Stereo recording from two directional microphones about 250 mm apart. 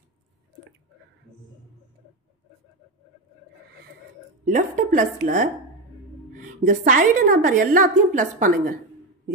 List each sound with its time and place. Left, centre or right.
4.5 s a woman's voice: right